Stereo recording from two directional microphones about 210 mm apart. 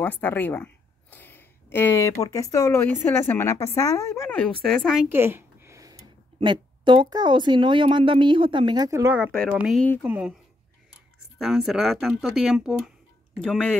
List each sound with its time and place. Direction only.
0.0 s a woman's voice: 10° left (ahead or behind)
5.1 s speech: 10° right (ahead or behind)
11.3 s speech: centre (ahead or behind)